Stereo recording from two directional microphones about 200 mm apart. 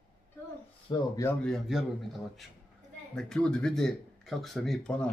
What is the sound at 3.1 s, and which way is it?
Speech, 5° left (ahead or behind).